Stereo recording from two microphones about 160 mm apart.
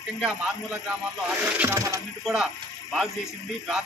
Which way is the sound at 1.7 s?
20° right (ahead or behind).